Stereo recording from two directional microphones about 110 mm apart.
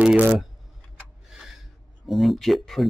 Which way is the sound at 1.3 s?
5° right (ahead or behind).